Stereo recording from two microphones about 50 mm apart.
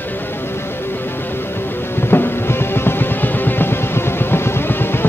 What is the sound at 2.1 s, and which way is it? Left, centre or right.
Music, left.